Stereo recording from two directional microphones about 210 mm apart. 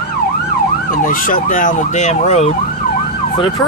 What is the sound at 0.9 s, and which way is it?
Speech, 40° left (ahead or behind).